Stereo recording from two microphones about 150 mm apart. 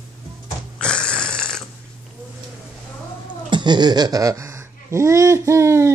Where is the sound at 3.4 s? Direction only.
30° right (ahead or behind).